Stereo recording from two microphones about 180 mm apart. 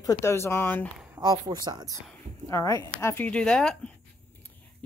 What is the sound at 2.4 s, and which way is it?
A woman's voice, 20° left (ahead or behind).